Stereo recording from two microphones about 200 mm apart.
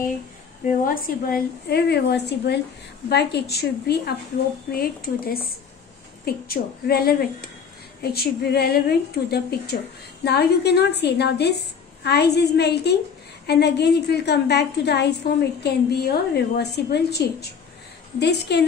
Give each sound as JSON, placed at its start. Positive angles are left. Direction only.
{"t": 0.8, "sound": "a woman's voice", "side_deg": 45}